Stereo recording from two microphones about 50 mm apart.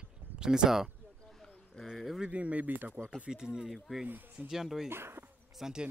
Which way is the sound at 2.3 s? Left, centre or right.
Right.